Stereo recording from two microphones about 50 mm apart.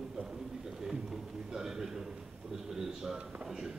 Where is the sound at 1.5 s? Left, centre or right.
Centre.